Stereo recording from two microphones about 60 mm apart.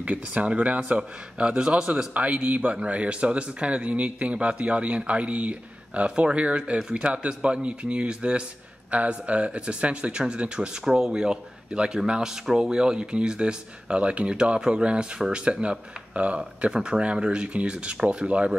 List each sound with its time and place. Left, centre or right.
0.0 s a man's voice: right